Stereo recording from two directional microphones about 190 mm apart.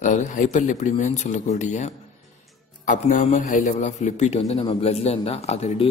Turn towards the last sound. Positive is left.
turn(degrees=35)  # may be behind; listen again after turning